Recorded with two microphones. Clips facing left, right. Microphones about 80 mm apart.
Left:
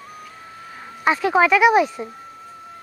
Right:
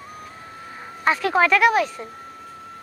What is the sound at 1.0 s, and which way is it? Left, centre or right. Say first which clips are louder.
Speech: left 2 dB; centre.